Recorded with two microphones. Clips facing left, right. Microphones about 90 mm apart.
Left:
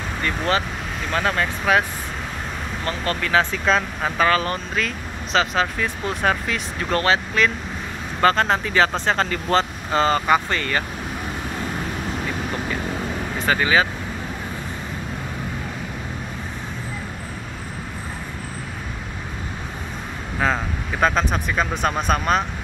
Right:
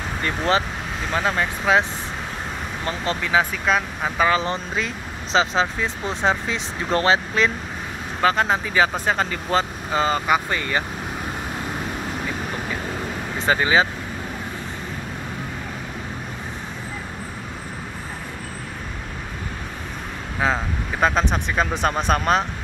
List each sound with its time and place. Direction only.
0.2 s speech: 25° right (ahead or behind)
1.1 s speech: 15° right (ahead or behind)
4.4 s speech: 25° right (ahead or behind)
8.2 s speech: 10° right (ahead or behind)
13.5 s speech: 25° right (ahead or behind)
20.3 s speech: 10° right (ahead or behind); by 22.4 s 30° right (ahead or behind)